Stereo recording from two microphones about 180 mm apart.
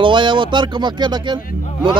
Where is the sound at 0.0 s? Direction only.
25° right (ahead or behind).